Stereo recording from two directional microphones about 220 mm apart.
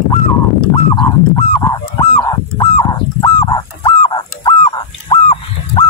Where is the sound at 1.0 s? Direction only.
15° left (ahead or behind).